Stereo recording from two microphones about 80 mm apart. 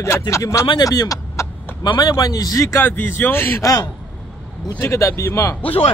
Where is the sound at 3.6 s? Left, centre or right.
Left.